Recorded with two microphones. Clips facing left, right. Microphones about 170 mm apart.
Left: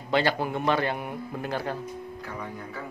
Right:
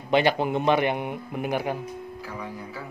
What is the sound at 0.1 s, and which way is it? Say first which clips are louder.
A man's voice: right 4 dB; 20° right (ahead or behind).